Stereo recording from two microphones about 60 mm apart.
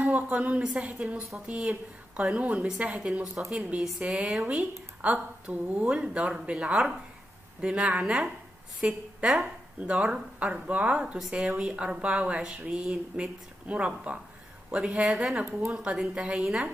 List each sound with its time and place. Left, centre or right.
0.0 s a woman's voice: right
16.0 s speech: centre